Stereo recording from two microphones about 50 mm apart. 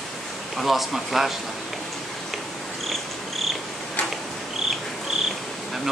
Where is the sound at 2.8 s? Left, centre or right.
Centre.